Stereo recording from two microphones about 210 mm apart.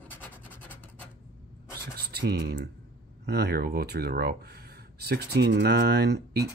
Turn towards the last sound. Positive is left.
turn(degrees=-50)  # may be behind; listen again after turning